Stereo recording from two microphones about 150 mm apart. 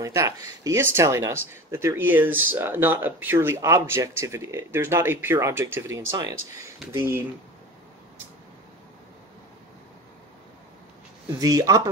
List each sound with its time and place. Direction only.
0.0 s speech: 20° right (ahead or behind)
11.3 s speech: 25° right (ahead or behind)